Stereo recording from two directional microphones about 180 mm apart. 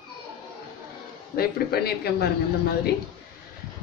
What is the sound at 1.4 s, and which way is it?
Speech, 60° left (ahead or behind).